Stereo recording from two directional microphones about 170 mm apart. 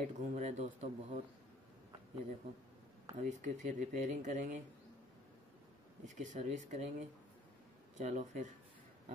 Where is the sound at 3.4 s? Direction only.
45° right (ahead or behind).